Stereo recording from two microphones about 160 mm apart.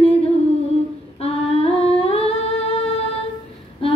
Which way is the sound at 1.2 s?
40° left (ahead or behind).